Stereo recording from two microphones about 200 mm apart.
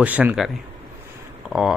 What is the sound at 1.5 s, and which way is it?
Speech, centre (ahead or behind).